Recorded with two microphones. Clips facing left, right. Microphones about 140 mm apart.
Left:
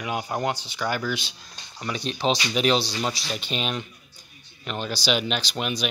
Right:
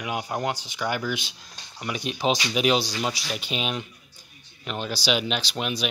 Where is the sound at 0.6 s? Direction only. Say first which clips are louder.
Even; 15° right (ahead or behind).